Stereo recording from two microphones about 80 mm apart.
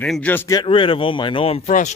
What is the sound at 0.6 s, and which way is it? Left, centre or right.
Speech, left.